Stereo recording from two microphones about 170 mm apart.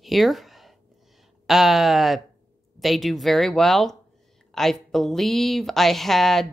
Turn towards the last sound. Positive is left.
turn(degrees=0)  # may be behind; listen again after turning